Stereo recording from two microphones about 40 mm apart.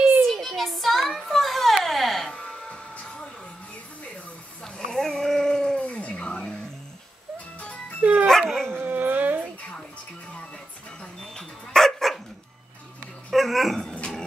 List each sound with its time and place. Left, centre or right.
0.3 s a sound: centre
1.9 s music: centre
2.3 s music: left
4.7 s a sound: centre
5.8 s a sound: left
8.0 s dog: right
8.3 s dog: centre
8.7 s music: right
11.0 s dog: centre
13.3 s dog: centre